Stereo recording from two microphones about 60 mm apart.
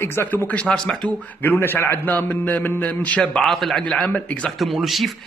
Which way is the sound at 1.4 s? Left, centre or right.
Left.